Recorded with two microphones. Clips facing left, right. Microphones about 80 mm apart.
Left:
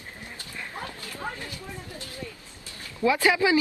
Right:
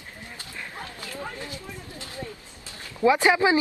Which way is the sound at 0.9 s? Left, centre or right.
Right.